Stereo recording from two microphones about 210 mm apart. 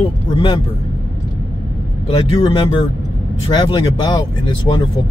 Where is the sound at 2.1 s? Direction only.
30° left (ahead or behind).